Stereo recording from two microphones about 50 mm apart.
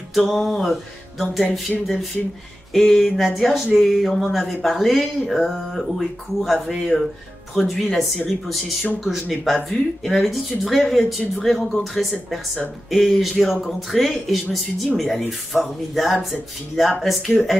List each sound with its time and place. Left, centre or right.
0.1 s music: centre
1.3 s speech: centre
2.7 s speech: centre